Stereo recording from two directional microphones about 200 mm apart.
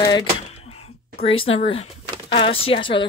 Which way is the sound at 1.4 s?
25° left (ahead or behind).